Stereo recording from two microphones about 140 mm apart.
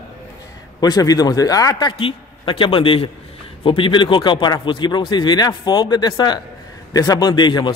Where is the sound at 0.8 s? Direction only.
25° left (ahead or behind).